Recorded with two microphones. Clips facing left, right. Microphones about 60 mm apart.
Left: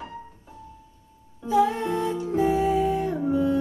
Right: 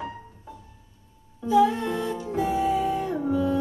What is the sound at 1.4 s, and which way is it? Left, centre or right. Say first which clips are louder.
Music: right 1 dB; left.